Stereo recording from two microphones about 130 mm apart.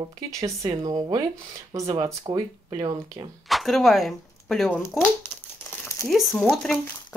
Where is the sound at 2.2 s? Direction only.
35° right (ahead or behind).